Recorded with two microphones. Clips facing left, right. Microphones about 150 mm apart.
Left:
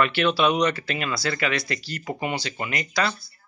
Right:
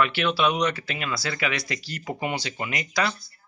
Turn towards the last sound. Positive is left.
turn(degrees=-10)  # may be behind; listen again after turning